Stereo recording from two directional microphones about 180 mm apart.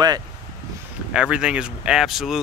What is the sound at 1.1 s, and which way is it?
Speech, 5° right (ahead or behind).